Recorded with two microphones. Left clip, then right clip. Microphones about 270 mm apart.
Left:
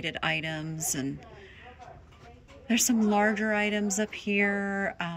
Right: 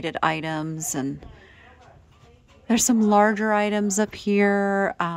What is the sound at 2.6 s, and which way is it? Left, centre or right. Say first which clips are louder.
Speech: right 5 dB; centre.